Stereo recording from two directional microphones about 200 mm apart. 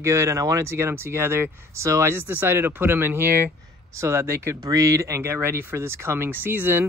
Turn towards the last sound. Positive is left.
turn(degrees=-10)  # may be behind; listen again after turning